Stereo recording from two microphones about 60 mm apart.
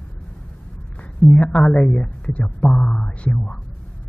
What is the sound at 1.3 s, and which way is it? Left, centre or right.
A woman's voice, centre.